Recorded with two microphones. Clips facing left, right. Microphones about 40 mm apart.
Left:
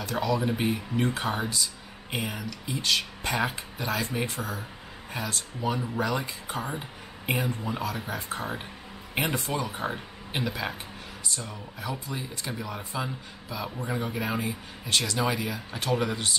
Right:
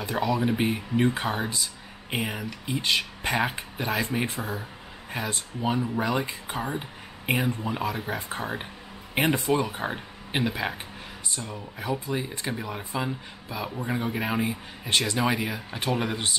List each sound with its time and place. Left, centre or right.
0.1 s speech: centre
6.7 s a sound: centre
7.3 s speech: centre